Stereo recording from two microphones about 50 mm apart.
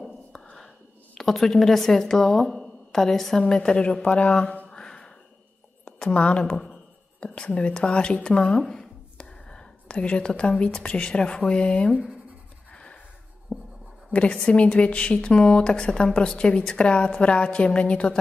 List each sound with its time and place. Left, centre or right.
1.1 s speech: centre; by 4.6 s left
4.6 s a sound: centre
5.9 s a woman's voice: left
6.5 s a sound: centre
7.2 s speech: left
12.7 s sniff: centre
13.5 s writing: centre
14.1 s a woman's voice: left